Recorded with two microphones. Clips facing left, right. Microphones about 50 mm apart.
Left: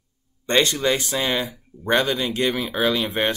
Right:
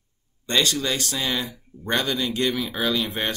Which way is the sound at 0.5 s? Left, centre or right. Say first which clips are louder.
Left 4 dB; left.